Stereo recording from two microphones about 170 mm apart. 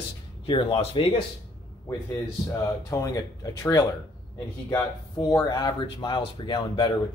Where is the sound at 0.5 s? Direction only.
35° left (ahead or behind).